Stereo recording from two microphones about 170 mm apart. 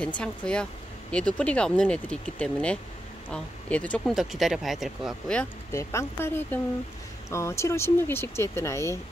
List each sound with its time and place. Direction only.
0.0 s speech: 5° left (ahead or behind)
5.7 s speech: 15° left (ahead or behind)